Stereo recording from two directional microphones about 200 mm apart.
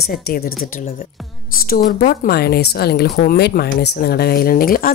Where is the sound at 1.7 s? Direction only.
45° left (ahead or behind).